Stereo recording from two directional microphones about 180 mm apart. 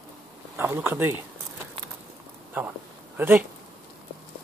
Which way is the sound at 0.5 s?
15° right (ahead or behind).